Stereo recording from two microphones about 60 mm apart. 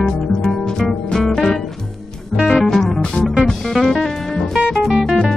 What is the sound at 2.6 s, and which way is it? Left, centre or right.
Music, centre.